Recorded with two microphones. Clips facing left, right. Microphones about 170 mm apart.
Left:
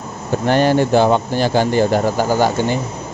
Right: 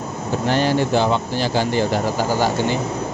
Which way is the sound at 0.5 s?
55° left (ahead or behind).